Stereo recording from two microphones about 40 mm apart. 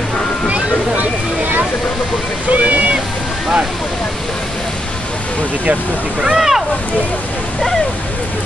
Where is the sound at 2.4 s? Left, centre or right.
Right.